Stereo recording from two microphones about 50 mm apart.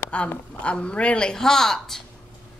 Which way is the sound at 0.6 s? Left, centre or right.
Left.